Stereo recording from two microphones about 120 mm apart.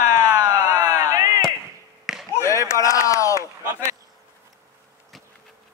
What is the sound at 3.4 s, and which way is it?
Speech, 25° right (ahead or behind).